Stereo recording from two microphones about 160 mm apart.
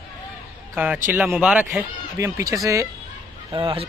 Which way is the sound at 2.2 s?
20° right (ahead or behind).